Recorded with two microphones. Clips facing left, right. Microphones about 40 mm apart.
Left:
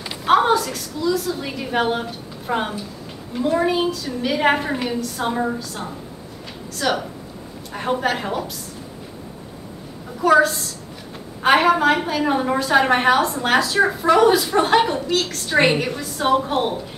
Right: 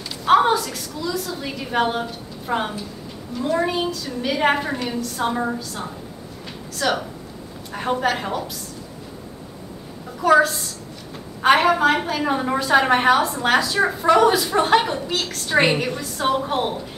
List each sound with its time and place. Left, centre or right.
0.0 s a sound: left
0.3 s a woman's voice: centre
10.2 s a woman's voice: centre